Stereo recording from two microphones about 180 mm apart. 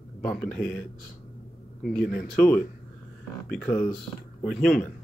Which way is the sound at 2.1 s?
50° left (ahead or behind).